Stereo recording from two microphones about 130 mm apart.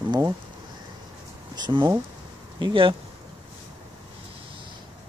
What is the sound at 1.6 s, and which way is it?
Speech, 40° right (ahead or behind).